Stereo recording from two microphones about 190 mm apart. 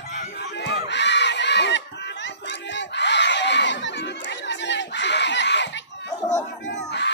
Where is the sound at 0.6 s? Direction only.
65° left (ahead or behind).